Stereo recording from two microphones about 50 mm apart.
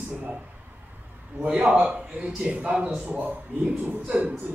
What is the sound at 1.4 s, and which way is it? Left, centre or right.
A man's voice, right.